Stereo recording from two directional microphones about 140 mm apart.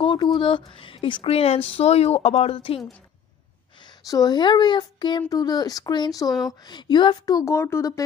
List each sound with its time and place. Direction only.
0.0 s a sound: 35° left (ahead or behind)
0.4 s speech: 35° left (ahead or behind)
4.1 s a woman's voice: 30° left (ahead or behind)